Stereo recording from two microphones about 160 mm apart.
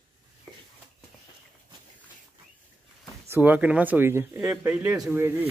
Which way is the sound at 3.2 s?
15° right (ahead or behind).